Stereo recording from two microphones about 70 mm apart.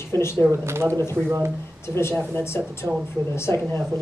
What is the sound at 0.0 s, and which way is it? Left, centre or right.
Speech, left.